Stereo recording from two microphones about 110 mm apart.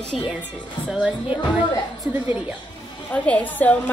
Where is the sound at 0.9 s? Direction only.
10° right (ahead or behind).